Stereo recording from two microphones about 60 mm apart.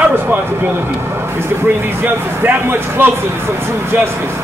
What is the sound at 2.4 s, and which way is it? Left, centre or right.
Speech, right.